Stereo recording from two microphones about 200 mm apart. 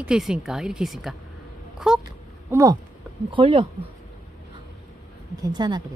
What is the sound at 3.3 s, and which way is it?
Speech, 25° right (ahead or behind).